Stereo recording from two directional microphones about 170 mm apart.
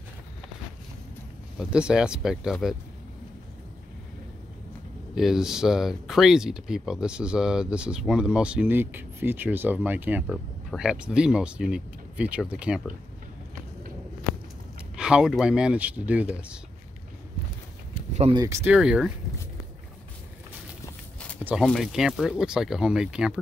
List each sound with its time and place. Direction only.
1.6 s speech: 5° right (ahead or behind)
5.1 s speech: 5° right (ahead or behind)
15.0 s speech: 5° right (ahead or behind)
18.3 s speech: 20° right (ahead or behind)
18.7 s speech: 5° right (ahead or behind)
21.6 s speech: centre (ahead or behind)